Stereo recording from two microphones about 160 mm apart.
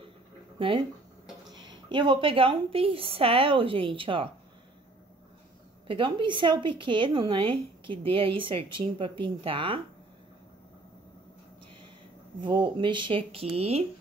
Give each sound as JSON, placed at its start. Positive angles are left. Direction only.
{"t": 0.6, "sound": "a woman's voice", "side_deg": -35}
{"t": 5.9, "sound": "a woman's voice", "side_deg": -30}
{"t": 12.4, "sound": "a woman's voice", "side_deg": -30}